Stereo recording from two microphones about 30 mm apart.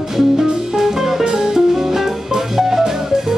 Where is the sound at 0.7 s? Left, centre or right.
Centre.